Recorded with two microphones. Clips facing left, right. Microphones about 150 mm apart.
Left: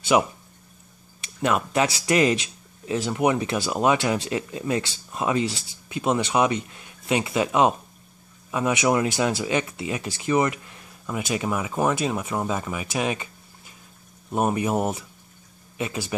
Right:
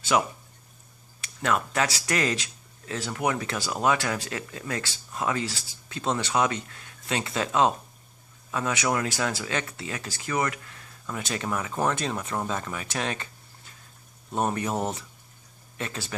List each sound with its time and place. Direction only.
0.1 s speech: 20° left (ahead or behind)